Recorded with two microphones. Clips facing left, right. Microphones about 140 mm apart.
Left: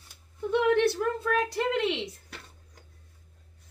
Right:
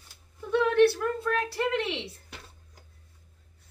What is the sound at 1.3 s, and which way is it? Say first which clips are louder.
Speech: even; 20° left (ahead or behind).